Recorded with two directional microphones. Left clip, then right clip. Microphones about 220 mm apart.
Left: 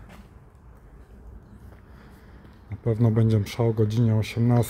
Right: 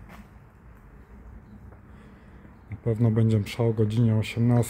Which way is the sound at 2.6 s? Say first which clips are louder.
Left 2 dB; 10° left (ahead or behind).